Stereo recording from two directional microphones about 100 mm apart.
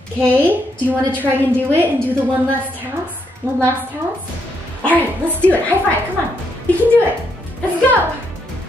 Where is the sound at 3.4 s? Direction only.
30° right (ahead or behind).